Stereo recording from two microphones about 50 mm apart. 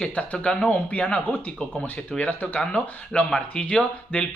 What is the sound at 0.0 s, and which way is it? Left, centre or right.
Speech, left.